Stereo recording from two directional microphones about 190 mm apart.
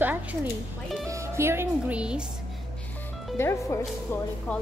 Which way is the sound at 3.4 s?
15° left (ahead or behind).